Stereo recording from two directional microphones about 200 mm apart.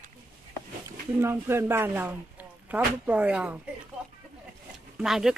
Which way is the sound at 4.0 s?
5° right (ahead or behind).